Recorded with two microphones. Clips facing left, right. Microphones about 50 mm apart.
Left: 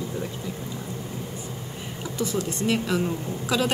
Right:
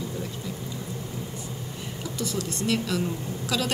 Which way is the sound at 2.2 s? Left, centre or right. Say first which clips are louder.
Left 4 dB; centre.